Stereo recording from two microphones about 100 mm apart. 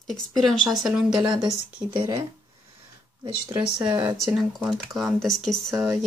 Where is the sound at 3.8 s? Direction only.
45° right (ahead or behind).